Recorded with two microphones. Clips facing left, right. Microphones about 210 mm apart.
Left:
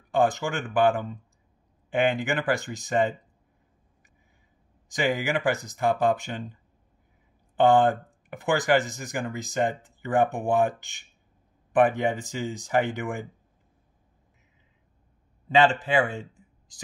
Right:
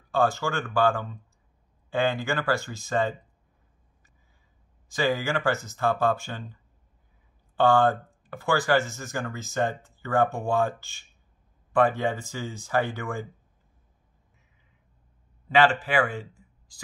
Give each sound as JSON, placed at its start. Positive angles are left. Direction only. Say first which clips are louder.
{"t": 0.1, "sound": "speech", "louder": "left 1 dB", "side_deg": 20}
{"t": 4.8, "sound": "speech", "louder": "even", "side_deg": 15}
{"t": 15.4, "sound": "speech", "louder": "left 1 dB", "side_deg": 20}